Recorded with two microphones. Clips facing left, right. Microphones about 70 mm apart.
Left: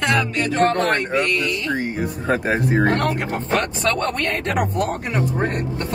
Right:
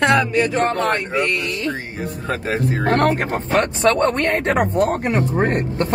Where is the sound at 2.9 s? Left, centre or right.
Right.